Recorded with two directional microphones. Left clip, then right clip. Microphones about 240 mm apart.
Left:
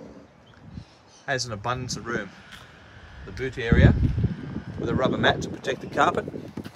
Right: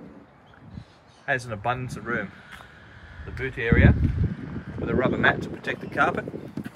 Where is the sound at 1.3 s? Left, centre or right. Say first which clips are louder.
Right 1 dB; centre.